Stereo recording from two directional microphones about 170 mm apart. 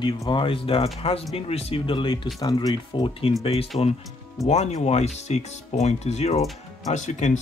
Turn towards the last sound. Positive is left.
turn(degrees=45)  # may be behind; listen again after turning